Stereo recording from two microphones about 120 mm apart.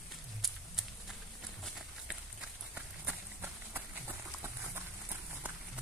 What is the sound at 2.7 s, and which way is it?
Run, 15° right (ahead or behind).